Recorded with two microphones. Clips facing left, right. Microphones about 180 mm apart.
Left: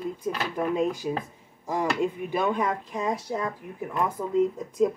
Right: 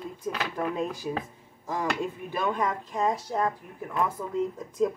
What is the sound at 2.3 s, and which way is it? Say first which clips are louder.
Speech: right 1 dB; 15° left (ahead or behind).